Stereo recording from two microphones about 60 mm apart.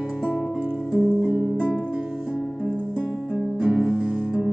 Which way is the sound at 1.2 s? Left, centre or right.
Centre.